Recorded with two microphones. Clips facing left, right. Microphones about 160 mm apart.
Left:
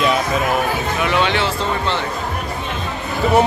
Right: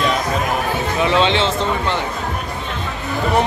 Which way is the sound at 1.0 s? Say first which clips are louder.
Right 2 dB; 25° right (ahead or behind).